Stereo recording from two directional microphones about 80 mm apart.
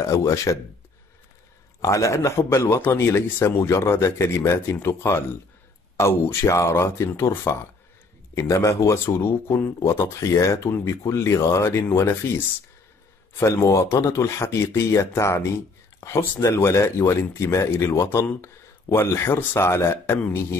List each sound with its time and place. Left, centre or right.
0.0 s speech: left
1.8 s speech: left
13.6 s speech: left